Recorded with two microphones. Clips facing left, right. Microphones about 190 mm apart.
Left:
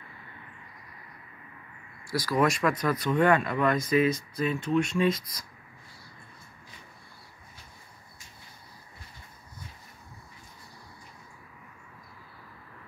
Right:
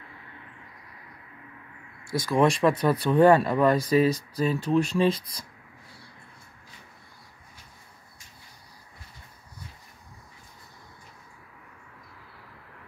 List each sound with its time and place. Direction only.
2.0 s speech: 25° right (ahead or behind)